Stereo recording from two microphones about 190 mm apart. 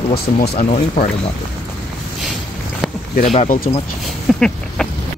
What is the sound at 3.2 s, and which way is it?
Speech, 40° left (ahead or behind).